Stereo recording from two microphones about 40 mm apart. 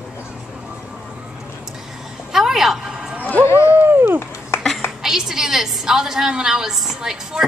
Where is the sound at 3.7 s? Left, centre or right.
Right.